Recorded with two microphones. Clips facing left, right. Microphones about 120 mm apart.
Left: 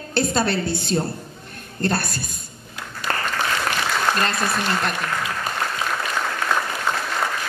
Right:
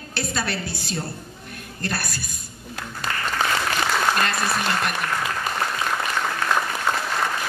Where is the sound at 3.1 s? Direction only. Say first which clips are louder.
Left 5 dB; 50° left (ahead or behind).